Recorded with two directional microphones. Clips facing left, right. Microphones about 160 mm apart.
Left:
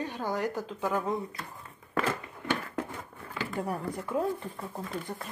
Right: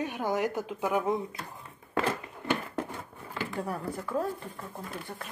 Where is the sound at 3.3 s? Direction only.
5° left (ahead or behind).